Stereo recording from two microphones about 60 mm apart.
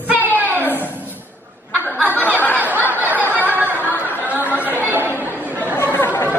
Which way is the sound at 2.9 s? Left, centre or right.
Right.